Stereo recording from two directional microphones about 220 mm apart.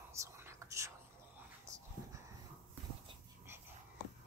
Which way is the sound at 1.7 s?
15° right (ahead or behind).